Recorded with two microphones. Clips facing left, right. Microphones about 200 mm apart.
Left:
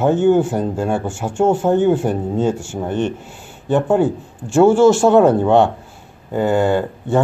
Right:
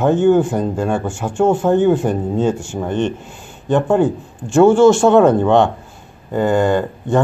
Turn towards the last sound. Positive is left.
turn(degrees=10)  # may be behind; listen again after turning